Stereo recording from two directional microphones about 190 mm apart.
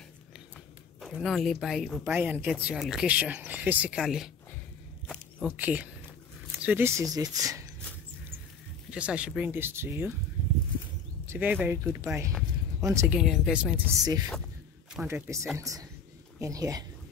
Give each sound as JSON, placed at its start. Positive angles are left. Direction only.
{"t": 1.0, "sound": "speech", "side_deg": 0}
{"t": 5.0, "sound": "zipper", "side_deg": 0}
{"t": 6.5, "sound": "speech", "side_deg": -10}
{"t": 8.9, "sound": "speech", "side_deg": -5}
{"t": 11.2, "sound": "speech", "side_deg": -10}
{"t": 13.2, "sound": "speech", "side_deg": -5}
{"t": 15.0, "sound": "speech", "side_deg": -15}